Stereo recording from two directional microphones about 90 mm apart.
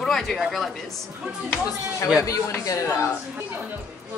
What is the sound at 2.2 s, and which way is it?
Speech, 35° left (ahead or behind).